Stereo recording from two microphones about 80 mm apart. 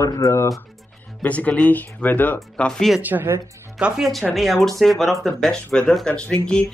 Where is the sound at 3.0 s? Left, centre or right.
Right.